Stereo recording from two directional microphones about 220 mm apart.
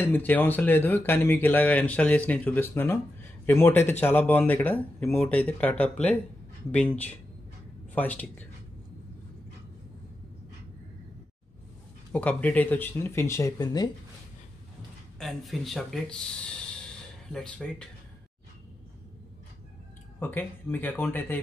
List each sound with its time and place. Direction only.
0.0 s speech: 10° left (ahead or behind)
12.1 s speech: 5° left (ahead or behind)
15.1 s speech: centre (ahead or behind)
20.2 s speech: 10° left (ahead or behind)